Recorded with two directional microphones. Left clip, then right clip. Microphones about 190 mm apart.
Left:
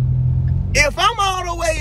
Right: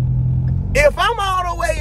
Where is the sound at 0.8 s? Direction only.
15° right (ahead or behind).